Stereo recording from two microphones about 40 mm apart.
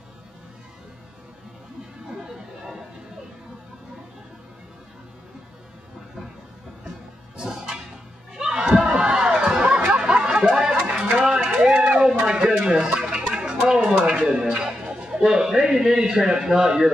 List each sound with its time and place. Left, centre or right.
2.3 s chatter: centre
7.3 s music: centre
8.4 s a sound: centre
9.1 s chatter: right
11.2 s a sound: centre
13.9 s music: right